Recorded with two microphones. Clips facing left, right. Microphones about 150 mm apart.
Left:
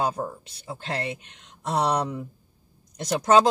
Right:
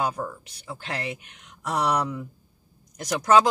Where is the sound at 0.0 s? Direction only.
30° left (ahead or behind).